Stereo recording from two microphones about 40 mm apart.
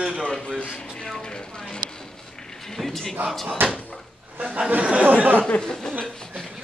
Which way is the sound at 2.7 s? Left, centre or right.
Centre.